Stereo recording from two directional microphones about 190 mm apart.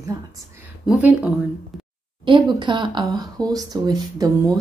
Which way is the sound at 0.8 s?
5° right (ahead or behind).